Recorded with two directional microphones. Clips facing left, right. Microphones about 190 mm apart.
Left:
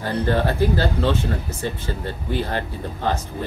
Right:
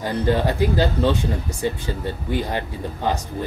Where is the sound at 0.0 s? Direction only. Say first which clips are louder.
Right 1 dB; 15° right (ahead or behind).